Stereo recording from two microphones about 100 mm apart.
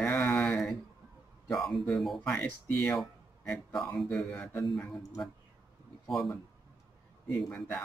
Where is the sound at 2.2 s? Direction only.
15° left (ahead or behind).